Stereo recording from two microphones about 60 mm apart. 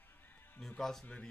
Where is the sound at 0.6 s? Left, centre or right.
Centre.